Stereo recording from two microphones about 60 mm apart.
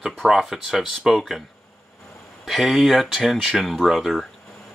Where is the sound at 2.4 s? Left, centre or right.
Centre.